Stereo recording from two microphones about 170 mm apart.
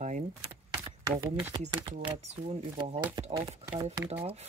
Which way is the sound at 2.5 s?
35° right (ahead or behind).